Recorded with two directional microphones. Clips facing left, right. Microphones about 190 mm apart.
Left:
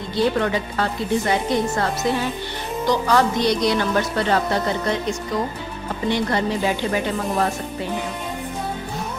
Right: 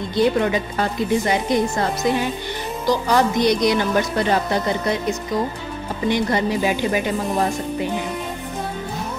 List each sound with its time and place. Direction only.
0.1 s speech: 15° right (ahead or behind)
6.0 s speech: 15° right (ahead or behind)